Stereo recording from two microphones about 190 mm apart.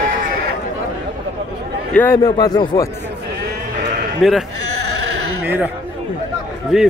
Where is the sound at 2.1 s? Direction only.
20° left (ahead or behind).